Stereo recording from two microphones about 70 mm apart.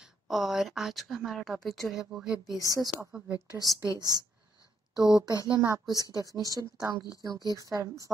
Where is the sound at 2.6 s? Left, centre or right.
Right.